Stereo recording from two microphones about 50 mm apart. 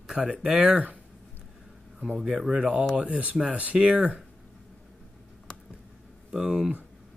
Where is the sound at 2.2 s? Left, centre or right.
Centre.